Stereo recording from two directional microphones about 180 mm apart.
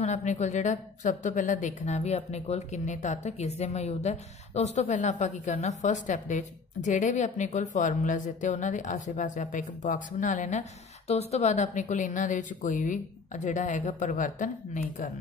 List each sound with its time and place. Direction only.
0.0 s a woman's voice: 40° left (ahead or behind)